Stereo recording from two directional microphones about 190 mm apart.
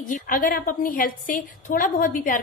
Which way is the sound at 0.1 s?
45° left (ahead or behind).